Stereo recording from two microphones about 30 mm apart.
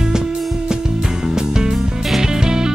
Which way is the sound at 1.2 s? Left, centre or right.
Right.